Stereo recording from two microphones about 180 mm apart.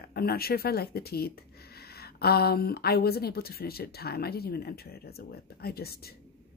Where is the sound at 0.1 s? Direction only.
60° left (ahead or behind).